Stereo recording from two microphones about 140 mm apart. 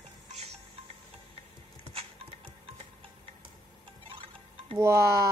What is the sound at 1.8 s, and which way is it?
Patter, 45° right (ahead or behind).